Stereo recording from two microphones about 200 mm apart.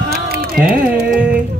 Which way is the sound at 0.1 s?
50° right (ahead or behind).